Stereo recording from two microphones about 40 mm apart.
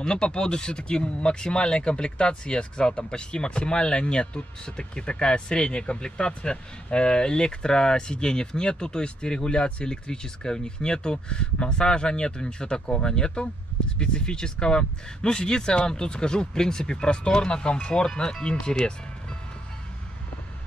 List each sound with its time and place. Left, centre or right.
0.0 s speech: left